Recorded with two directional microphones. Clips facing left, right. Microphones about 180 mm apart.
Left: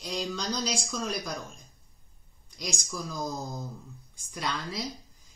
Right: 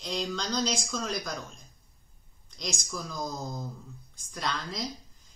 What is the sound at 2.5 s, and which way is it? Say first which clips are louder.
Speech: even; 5° left (ahead or behind).